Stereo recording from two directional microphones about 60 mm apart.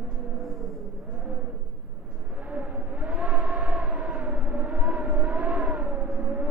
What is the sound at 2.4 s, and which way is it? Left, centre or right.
Civil defense siren, right.